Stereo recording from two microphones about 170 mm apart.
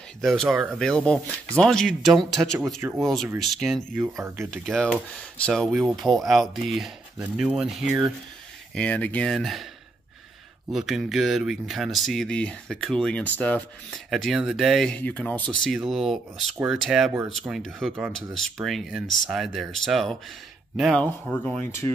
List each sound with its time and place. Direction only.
0.2 s speech: centre (ahead or behind)
3.9 s speech: 10° right (ahead or behind)
4.5 s speech: 5° left (ahead or behind)
8.7 s speech: 10° left (ahead or behind)
10.7 s speech: centre (ahead or behind)